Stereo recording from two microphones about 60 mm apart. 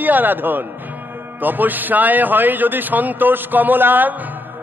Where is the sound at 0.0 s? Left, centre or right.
Right.